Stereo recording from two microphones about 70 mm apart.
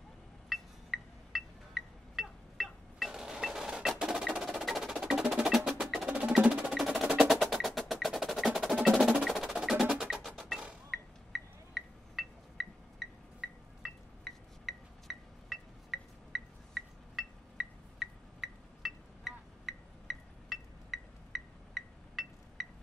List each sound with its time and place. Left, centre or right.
0.5 s music: centre
4.0 s percussion: centre
6.0 s percussion: centre
9.9 s music: centre
10.9 s a sound: centre